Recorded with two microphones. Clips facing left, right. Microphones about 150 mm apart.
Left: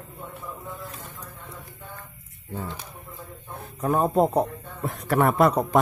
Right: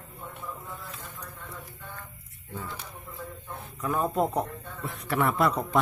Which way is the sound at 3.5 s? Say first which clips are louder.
Left 6 dB; 45° left (ahead or behind).